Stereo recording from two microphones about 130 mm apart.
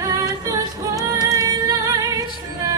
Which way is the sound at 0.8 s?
25° right (ahead or behind).